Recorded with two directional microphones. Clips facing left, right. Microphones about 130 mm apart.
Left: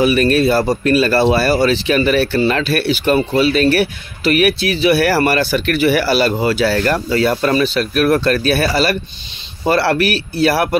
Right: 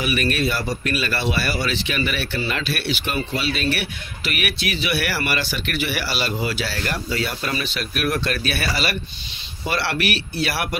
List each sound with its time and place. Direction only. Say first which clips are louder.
0.0 s speech: left 9 dB; 40° left (ahead or behind)